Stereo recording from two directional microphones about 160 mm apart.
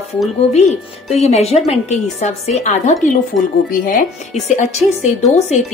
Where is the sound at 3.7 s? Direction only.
60° left (ahead or behind).